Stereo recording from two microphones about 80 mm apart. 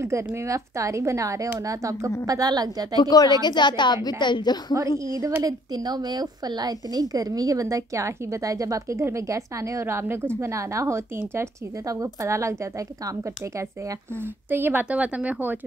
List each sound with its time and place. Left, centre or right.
0.0 s a woman's voice: right
3.0 s speech: left
3.4 s a woman's voice: left
4.9 s a woman's voice: right
14.5 s speech: right